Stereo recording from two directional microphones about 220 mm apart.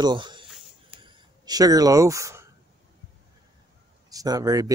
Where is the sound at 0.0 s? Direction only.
20° right (ahead or behind).